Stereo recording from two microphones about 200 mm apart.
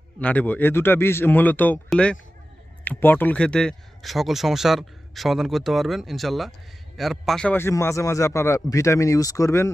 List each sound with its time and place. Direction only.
0.2 s a man's voice: 5° left (ahead or behind)